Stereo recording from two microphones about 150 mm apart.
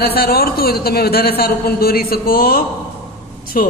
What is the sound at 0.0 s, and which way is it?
A man's voice, 90° left.